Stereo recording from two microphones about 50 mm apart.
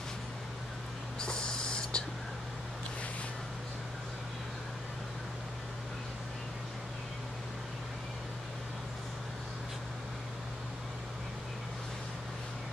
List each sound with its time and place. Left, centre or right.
1.2 s owl: centre